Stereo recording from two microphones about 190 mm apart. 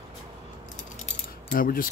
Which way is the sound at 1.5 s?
50° left (ahead or behind).